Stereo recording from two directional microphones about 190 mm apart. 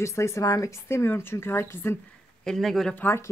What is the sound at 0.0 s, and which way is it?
Speech, 15° left (ahead or behind).